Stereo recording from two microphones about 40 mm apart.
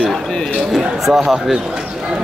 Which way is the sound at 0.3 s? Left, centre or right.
Centre.